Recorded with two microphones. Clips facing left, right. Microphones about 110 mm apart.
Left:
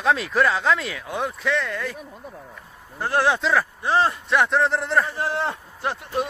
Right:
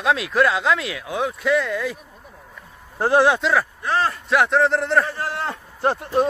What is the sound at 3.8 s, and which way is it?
Speech, 20° left (ahead or behind).